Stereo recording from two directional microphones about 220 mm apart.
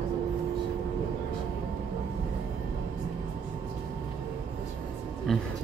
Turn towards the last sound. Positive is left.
turn(degrees=0)  # may be behind; listen again after turning